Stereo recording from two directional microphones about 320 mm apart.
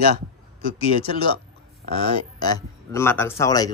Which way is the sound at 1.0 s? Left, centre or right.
Centre.